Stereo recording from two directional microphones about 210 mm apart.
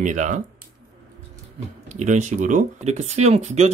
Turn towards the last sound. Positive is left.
turn(degrees=-30)  # may be behind; listen again after turning